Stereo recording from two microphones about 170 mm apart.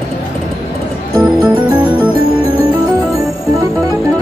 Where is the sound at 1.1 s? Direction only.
10° right (ahead or behind).